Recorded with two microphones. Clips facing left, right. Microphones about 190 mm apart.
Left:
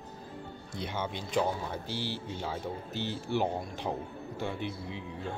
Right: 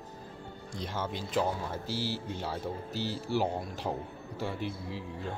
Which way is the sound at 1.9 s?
40° right (ahead or behind).